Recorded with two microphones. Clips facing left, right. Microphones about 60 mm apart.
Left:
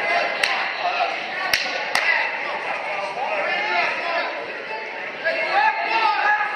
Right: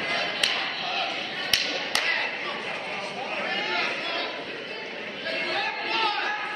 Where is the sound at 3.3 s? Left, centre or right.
Left.